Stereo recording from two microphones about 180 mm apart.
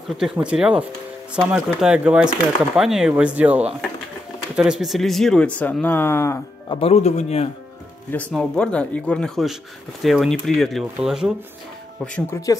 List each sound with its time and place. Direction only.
0.2 s speech: 5° right (ahead or behind); by 6.4 s 15° left (ahead or behind)
6.7 s speech: 35° left (ahead or behind)
8.1 s speech: 5° left (ahead or behind)